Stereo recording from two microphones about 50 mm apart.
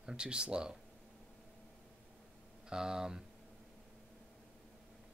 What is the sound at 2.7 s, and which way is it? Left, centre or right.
Speech, centre.